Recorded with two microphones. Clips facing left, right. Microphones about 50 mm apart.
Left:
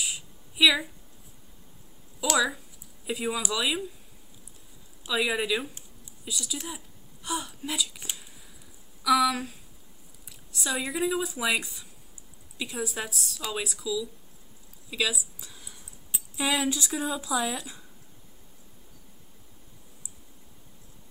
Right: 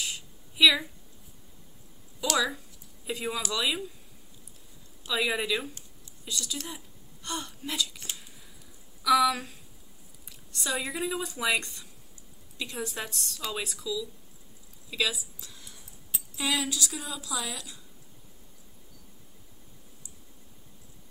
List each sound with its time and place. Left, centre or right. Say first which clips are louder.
0.0 s a sound: left 1 dB; centre
2.1 s a woman's voice: left 2 dB; centre
5.0 s a woman's voice: left 2 dB; centre; by 17.8 s left